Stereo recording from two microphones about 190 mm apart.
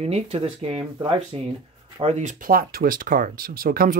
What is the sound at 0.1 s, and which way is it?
Speech, 30° right (ahead or behind).